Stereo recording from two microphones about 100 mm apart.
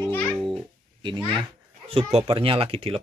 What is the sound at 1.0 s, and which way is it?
Speech, 55° right (ahead or behind).